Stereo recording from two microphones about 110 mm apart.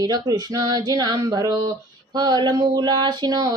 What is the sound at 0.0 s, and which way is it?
Speech, 35° right (ahead or behind).